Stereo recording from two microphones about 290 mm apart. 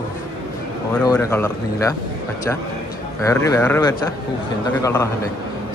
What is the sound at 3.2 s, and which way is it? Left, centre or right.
Speech, centre.